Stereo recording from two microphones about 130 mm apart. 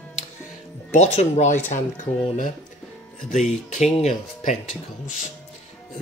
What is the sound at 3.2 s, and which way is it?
Speech, 75° left (ahead or behind).